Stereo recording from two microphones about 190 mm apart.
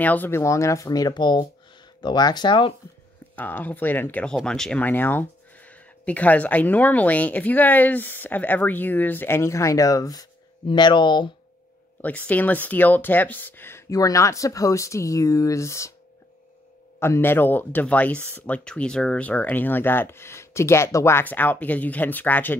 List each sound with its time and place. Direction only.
0.0 s speech: 10° left (ahead or behind); by 2.7 s 25° left (ahead or behind)
3.3 s speech: 10° left (ahead or behind); by 11.2 s 25° left (ahead or behind)
12.0 s speech: 10° left (ahead or behind)
17.0 s speech: 10° left (ahead or behind)